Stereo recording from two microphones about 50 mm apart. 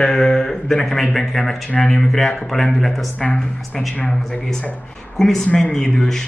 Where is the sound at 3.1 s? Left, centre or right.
Left.